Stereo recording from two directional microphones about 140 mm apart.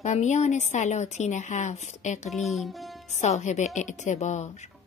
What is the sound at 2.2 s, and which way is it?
Speech, centre (ahead or behind).